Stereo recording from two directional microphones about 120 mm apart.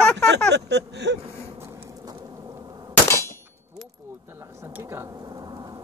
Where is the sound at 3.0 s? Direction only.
25° left (ahead or behind).